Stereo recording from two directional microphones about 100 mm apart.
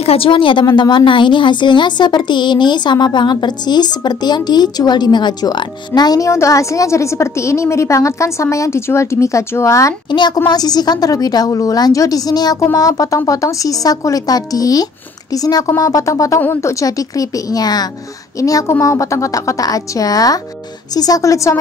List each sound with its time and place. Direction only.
0.0 s a woman's voice: 75° left (ahead or behind); by 9.9 s 30° left (ahead or behind)
10.1 s a woman's voice: 50° left (ahead or behind); by 16.3 s 35° left (ahead or behind)
16.3 s a woman's voice: 20° left (ahead or behind)
16.8 s a woman's voice: 35° left (ahead or behind)